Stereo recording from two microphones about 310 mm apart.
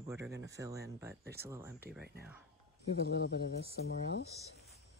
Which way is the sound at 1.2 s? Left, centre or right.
Right.